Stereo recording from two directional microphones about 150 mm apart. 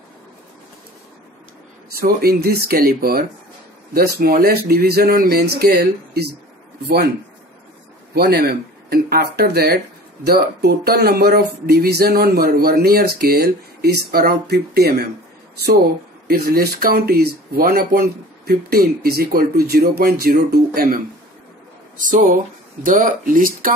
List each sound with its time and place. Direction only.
2.0 s speech: 90° right
8.1 s speech: 90° right
16.3 s speech: 85° right
22.0 s speech: 65° right (ahead or behind)